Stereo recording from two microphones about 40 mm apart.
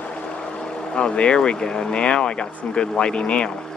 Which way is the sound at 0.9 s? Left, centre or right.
Left.